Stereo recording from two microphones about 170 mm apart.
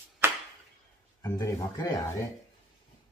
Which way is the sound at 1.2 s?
20° left (ahead or behind).